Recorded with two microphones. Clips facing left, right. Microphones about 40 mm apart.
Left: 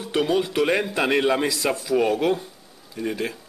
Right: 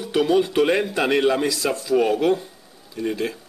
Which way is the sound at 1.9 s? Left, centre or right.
Centre.